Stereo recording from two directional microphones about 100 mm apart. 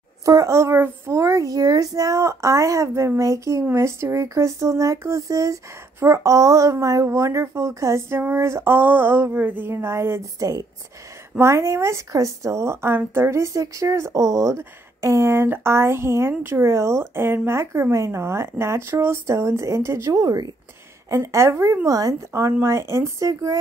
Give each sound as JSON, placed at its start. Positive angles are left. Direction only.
{"t": 0.2, "sound": "a child's voice", "side_deg": -30}